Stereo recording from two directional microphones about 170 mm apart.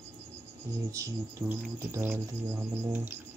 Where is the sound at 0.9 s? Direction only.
15° right (ahead or behind).